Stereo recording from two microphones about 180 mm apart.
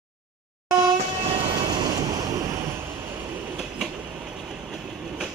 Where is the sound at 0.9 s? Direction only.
35° right (ahead or behind).